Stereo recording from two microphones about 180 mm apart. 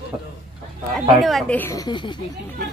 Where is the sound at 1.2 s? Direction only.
Centre (ahead or behind).